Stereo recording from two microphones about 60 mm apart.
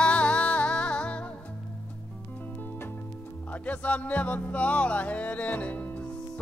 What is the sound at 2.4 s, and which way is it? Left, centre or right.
Music, left.